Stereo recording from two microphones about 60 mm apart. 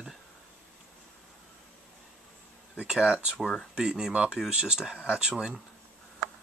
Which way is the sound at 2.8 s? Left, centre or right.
Centre.